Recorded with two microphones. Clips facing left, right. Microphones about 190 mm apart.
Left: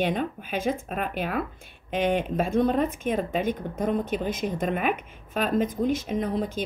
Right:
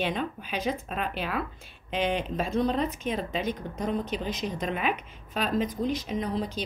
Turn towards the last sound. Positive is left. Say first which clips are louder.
# left 3 dB
turn(degrees=50)  # may be behind; listen again after turning